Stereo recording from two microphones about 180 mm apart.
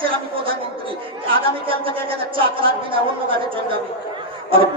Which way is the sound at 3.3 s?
30° right (ahead or behind).